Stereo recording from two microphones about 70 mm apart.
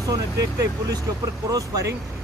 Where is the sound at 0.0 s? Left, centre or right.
Right.